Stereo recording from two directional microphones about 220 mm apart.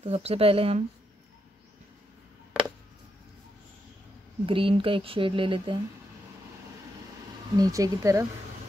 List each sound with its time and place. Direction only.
0.0 s speech: 30° right (ahead or behind)
4.5 s speech: 25° right (ahead or behind)
7.5 s speech: 15° right (ahead or behind)